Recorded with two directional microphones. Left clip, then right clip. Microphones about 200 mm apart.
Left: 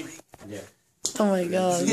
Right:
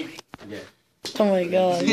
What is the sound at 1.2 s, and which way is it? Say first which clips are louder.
Speech: right 4 dB; 10° left (ahead or behind).